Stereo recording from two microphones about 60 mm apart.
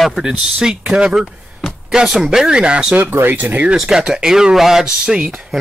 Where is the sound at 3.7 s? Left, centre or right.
Centre.